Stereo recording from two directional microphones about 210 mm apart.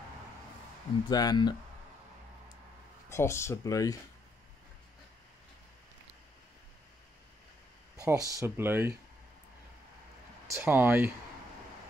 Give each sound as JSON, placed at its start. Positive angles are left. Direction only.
{"t": 1.1, "sound": "speech", "side_deg": 20}
{"t": 3.1, "sound": "speech", "side_deg": 10}
{"t": 8.0, "sound": "speech", "side_deg": -15}
{"t": 10.5, "sound": "speech", "side_deg": -10}